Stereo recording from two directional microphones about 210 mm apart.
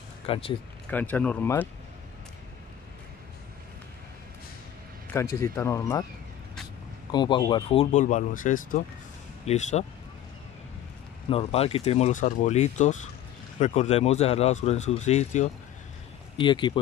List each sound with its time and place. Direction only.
0.3 s speech: 25° left (ahead or behind)
0.8 s speech: 10° left (ahead or behind)
5.1 s speech: 10° left (ahead or behind)
7.1 s speech: 20° left (ahead or behind)
11.2 s speech: 30° left (ahead or behind)